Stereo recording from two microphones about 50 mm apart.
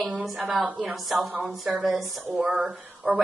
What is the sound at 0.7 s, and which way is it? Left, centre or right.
Speech, right.